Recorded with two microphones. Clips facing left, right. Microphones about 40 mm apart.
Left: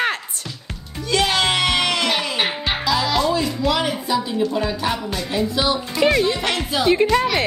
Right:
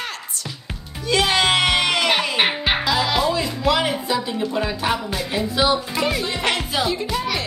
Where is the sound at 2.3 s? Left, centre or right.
Right.